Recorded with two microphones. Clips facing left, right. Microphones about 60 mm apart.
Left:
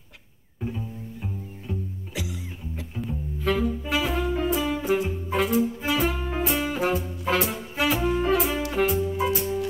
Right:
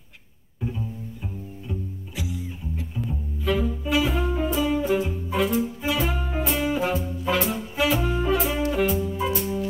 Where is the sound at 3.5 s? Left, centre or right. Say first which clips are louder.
Right 1 dB; centre.